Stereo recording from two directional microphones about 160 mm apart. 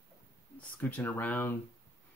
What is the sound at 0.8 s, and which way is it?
Speech, 10° left (ahead or behind).